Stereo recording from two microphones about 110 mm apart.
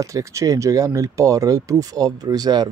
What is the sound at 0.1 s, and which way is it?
Speech, 30° right (ahead or behind).